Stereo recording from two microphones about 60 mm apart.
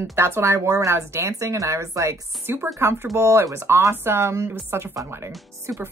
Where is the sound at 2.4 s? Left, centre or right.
Right.